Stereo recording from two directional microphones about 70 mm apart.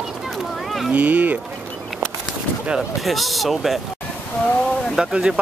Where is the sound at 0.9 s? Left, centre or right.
Right.